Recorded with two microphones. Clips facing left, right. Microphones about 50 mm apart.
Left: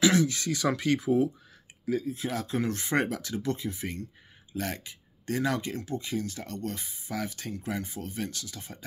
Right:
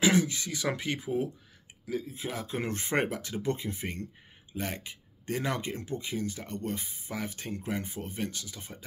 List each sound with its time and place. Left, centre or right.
0.0 s speech: right
2.6 s speech: right